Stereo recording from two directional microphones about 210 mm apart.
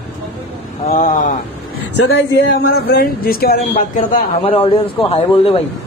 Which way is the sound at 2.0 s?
50° left (ahead or behind).